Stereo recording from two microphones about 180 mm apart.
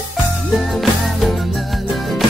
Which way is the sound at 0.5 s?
Centre (ahead or behind).